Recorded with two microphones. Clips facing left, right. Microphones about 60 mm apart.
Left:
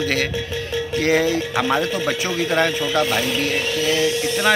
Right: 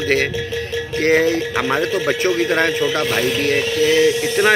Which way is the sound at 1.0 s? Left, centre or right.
Right.